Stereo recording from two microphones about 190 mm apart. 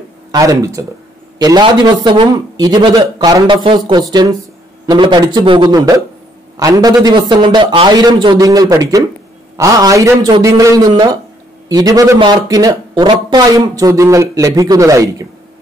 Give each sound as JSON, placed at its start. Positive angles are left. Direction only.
{"t": 0.3, "sound": "a man's voice", "side_deg": -15}